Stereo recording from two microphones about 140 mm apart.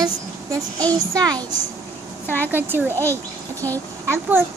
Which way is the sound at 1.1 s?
25° right (ahead or behind).